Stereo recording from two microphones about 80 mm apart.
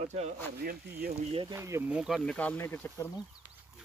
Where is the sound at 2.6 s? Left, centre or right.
Left.